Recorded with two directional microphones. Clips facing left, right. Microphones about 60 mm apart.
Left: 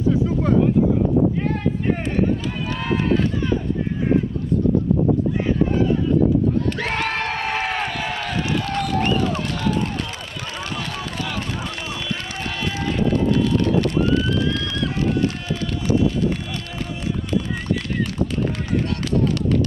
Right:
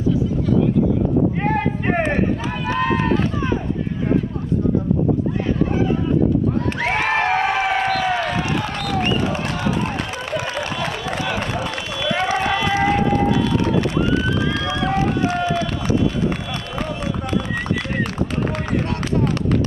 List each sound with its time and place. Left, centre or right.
1.4 s a sound: right
6.8 s crowd: right
8.6 s run: right
10.3 s a sound: right
12.7 s run: right
14.9 s run: right